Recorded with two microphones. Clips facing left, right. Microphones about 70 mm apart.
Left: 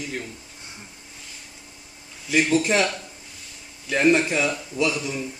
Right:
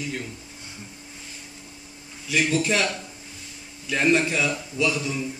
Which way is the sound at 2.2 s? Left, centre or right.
Left.